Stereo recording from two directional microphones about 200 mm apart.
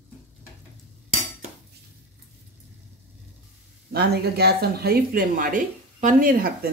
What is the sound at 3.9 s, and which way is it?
Speech, 55° right (ahead or behind).